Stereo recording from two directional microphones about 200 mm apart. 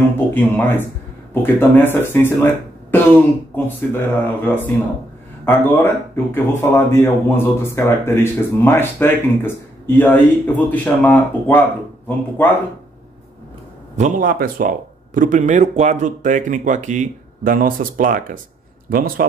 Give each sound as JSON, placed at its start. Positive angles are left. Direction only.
{"t": 0.3, "sound": "speech", "side_deg": 10}
{"t": 13.9, "sound": "a man's voice", "side_deg": -40}